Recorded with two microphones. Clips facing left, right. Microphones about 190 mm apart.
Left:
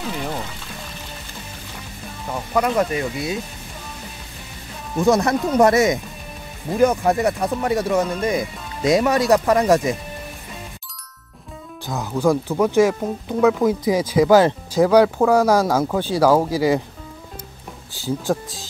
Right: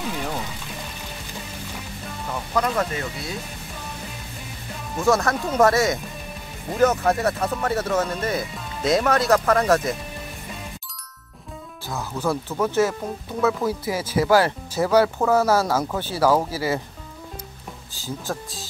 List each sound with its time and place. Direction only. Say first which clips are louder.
2.5 s speech: left 4 dB; 15° left (ahead or behind)
4.9 s speech: left 4 dB; 15° left (ahead or behind)
11.8 s speech: left 6 dB; 15° left (ahead or behind)
17.9 s speech: left 8 dB; 15° left (ahead or behind)